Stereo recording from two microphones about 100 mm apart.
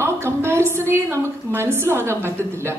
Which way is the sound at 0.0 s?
25° right (ahead or behind).